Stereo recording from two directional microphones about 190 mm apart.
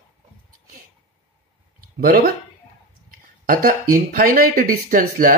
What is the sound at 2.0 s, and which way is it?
Speech, 50° right (ahead or behind).